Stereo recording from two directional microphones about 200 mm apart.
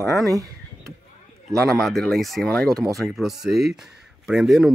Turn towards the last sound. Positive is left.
turn(degrees=0)  # may be behind; listen again after turning